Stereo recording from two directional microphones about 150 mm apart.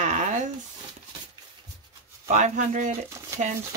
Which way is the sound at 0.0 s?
55° right (ahead or behind).